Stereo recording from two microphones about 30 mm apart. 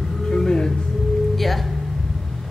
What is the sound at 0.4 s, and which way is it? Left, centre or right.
Music, left.